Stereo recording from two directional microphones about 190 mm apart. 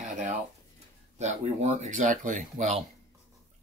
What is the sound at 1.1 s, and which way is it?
Speech, 35° right (ahead or behind).